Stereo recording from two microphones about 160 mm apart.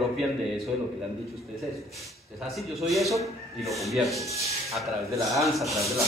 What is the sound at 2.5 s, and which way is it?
A man's voice, centre (ahead or behind).